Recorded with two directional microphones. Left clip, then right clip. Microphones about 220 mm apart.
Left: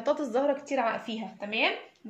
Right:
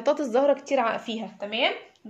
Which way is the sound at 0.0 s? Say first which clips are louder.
Right 5 dB; 45° right (ahead or behind).